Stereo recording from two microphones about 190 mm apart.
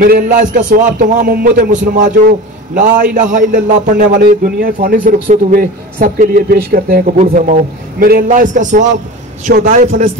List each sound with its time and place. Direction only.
0.0 s a man's voice: 45° right (ahead or behind)